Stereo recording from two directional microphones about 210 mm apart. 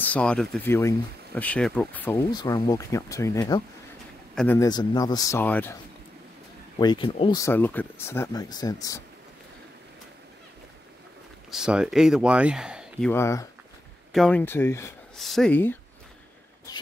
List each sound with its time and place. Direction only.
0.0 s speech: 5° left (ahead or behind)
6.8 s speech: 20° left (ahead or behind)
7.3 s speech: 10° left (ahead or behind)
11.5 s speech: 5° right (ahead or behind)
13.1 s speech: 15° left (ahead or behind)
15.1 s speech: centre (ahead or behind)